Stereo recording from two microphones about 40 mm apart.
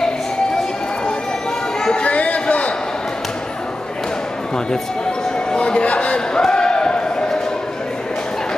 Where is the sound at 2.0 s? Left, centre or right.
Left.